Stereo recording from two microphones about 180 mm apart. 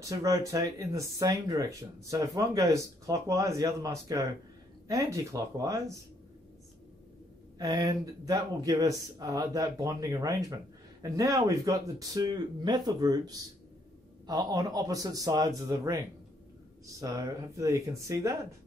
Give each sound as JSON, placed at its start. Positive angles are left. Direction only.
{"t": 0.0, "sound": "speech", "side_deg": -20}
{"t": 7.5, "sound": "speech", "side_deg": -20}